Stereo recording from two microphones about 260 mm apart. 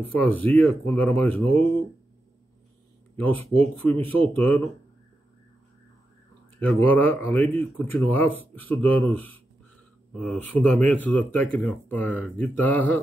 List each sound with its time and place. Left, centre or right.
0.0 s speech: centre
3.2 s speech: centre
6.6 s speech: centre